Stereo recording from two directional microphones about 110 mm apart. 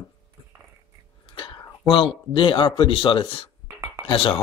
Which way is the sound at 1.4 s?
45° left (ahead or behind).